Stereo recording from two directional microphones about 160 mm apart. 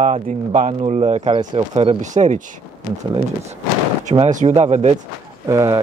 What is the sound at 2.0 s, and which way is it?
Speech, 50° right (ahead or behind).